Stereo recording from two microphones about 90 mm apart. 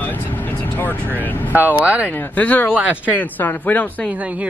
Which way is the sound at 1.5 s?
15° right (ahead or behind).